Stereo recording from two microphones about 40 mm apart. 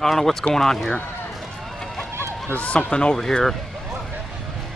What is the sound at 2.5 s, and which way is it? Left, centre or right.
Speech, left.